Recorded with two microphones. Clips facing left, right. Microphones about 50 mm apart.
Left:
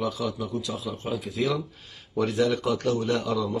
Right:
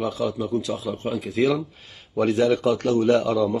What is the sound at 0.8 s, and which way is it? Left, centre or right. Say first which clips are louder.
Speech: right 4 dB; right.